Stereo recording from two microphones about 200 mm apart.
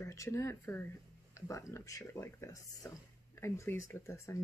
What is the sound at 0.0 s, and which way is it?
Speech, 15° left (ahead or behind).